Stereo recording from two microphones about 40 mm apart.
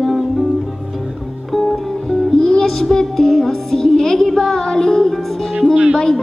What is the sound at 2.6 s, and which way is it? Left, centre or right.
Music, centre.